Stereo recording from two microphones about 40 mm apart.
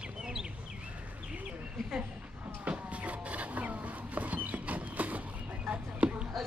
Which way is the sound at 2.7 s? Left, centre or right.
Right.